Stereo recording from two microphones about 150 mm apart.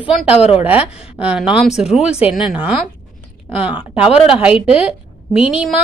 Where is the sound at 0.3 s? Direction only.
40° left (ahead or behind).